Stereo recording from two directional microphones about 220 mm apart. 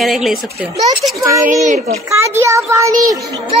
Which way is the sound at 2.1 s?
15° right (ahead or behind).